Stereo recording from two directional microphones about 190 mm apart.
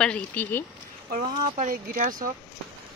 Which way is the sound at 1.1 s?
45° right (ahead or behind).